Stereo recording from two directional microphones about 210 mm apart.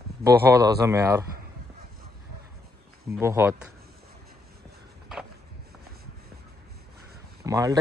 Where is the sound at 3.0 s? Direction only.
10° right (ahead or behind).